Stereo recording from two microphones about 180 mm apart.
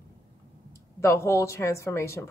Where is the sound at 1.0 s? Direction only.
15° left (ahead or behind).